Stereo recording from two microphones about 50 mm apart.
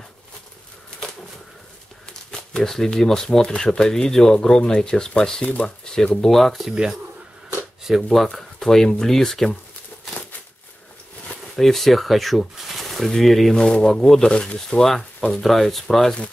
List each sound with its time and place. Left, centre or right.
2.5 s speech: centre
6.2 s speech: centre
7.8 s speech: centre
11.5 s speech: centre
13.7 s speech: centre